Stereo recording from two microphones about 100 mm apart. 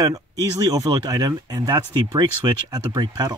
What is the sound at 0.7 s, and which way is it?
Speech, 40° right (ahead or behind).